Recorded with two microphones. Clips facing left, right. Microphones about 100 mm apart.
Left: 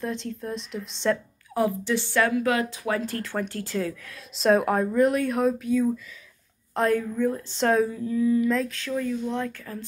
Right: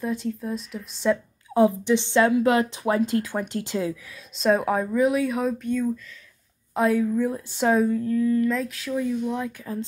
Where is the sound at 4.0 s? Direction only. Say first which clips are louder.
Even; centre (ahead or behind).